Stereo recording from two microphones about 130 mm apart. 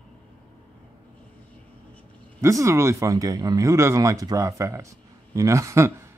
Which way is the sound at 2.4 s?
25° right (ahead or behind).